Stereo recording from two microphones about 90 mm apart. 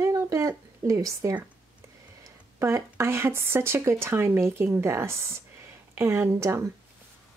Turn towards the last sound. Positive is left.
turn(degrees=-30)  # may be behind; listen again after turning